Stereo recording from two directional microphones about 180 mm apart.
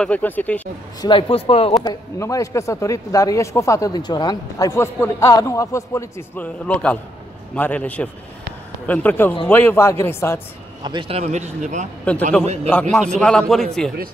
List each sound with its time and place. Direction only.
0.0 s a man's voice: 10° left (ahead or behind)
1.0 s speech: 30° left (ahead or behind)
1.8 s a man's voice: 20° left (ahead or behind)
10.8 s a man's voice: 25° right (ahead or behind); by 11.9 s 40° right (ahead or behind)
12.0 s a man's voice: 5° left (ahead or behind)